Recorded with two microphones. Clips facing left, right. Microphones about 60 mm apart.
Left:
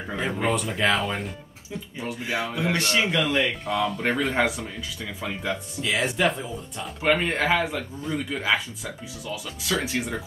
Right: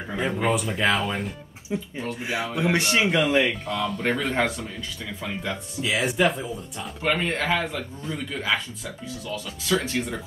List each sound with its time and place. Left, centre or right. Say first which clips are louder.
0.1 s speech: right 1 dB; centre
2.7 s speech: right 2 dB; centre
3.6 s speech: left 1 dB; centre